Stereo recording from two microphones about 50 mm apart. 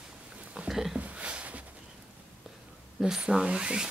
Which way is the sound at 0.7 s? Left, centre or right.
Centre.